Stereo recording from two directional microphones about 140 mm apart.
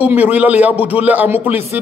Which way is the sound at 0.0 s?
10° right (ahead or behind).